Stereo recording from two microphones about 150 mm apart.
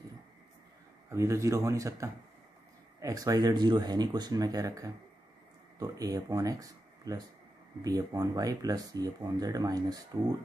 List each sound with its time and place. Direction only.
1.1 s speech: 20° right (ahead or behind)